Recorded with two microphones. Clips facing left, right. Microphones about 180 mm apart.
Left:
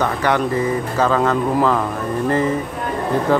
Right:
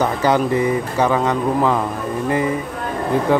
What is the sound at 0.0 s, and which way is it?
Speech, 20° right (ahead or behind).